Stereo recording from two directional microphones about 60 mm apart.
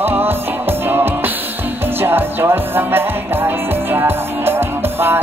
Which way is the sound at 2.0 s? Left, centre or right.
Right.